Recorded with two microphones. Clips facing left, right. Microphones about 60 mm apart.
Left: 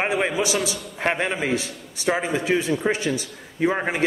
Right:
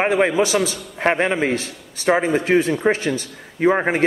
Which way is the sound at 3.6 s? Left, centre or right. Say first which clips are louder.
Right 5 dB; right.